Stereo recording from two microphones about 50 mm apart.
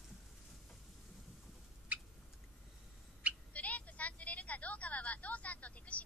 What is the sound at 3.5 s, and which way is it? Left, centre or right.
Vehicle, left.